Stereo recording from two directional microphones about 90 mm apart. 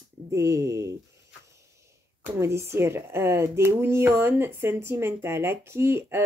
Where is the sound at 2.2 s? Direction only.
30° right (ahead or behind).